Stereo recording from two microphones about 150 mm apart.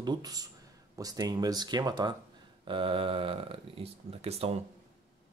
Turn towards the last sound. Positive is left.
turn(degrees=-40)  # may be behind; listen again after turning